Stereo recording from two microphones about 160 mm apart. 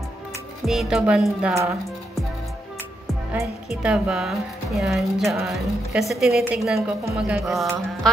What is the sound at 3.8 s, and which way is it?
Speech, 5° right (ahead or behind).